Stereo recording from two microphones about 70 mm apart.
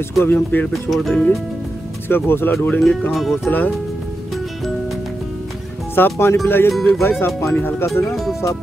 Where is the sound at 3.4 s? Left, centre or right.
Left.